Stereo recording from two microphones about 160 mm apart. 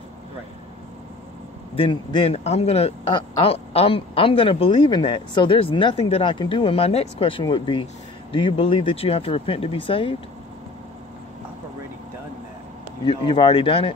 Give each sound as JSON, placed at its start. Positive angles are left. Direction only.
{"t": 1.8, "sound": "speech", "side_deg": 30}
{"t": 13.0, "sound": "speech", "side_deg": 30}